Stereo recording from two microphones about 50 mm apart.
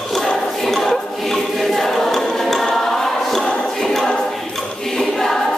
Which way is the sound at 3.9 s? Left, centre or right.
Centre.